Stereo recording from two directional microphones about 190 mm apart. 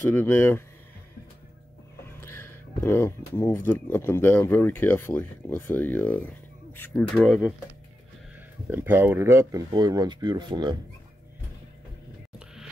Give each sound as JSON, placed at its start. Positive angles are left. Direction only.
{"t": 0.1, "sound": "speech", "side_deg": 10}
{"t": 2.0, "sound": "speech", "side_deg": 15}
{"t": 8.6, "sound": "speech", "side_deg": -10}